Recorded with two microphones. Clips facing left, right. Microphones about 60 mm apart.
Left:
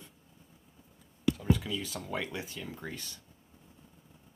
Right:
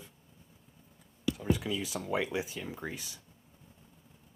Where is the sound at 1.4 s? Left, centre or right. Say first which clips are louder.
Left 1 dB; centre.